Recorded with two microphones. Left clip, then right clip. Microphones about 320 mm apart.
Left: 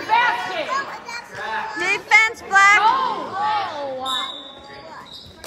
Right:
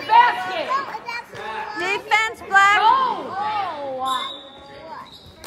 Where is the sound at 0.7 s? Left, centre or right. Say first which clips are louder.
Right 1 dB; right.